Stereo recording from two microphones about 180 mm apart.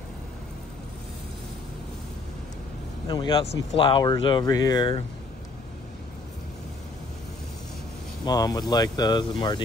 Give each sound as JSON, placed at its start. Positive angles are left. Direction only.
{"t": 3.1, "sound": "speech", "side_deg": 25}
{"t": 8.3, "sound": "speech", "side_deg": 20}